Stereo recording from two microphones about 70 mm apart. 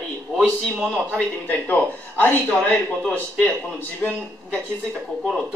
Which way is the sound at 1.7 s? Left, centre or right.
Left.